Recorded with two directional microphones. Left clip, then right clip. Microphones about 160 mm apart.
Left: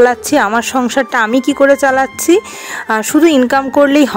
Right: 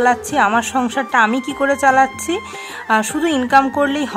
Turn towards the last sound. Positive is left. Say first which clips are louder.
# left 8 dB
turn(degrees=35)  # may be behind; listen again after turning